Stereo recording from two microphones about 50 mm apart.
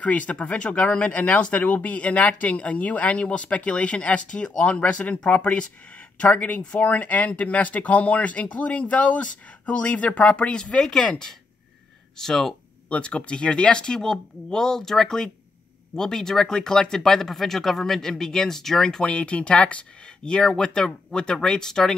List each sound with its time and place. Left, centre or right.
0.0 s speech: left
10.6 s speech: centre
12.2 s speech: centre
12.9 s speech: left